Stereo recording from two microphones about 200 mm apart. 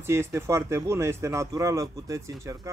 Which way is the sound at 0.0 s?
15° right (ahead or behind).